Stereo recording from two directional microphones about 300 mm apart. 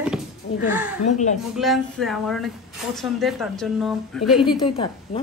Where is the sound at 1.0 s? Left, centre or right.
Left.